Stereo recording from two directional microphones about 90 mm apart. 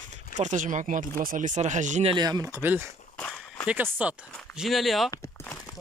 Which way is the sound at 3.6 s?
20° right (ahead or behind).